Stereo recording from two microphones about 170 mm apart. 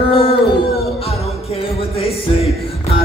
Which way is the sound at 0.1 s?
35° left (ahead or behind).